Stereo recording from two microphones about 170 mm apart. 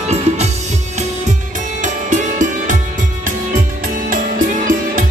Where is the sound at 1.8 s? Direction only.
45° right (ahead or behind).